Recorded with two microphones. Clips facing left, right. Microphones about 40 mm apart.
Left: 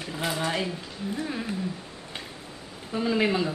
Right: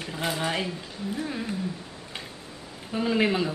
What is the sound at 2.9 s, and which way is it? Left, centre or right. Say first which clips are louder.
Speech: even; centre.